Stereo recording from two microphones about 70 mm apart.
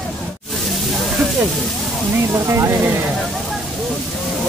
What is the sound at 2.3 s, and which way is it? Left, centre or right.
Speech, right.